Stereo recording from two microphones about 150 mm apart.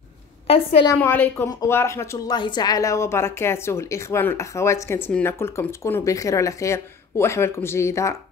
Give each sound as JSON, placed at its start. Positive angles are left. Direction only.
{"t": 0.9, "sound": "a woman's voice", "side_deg": 10}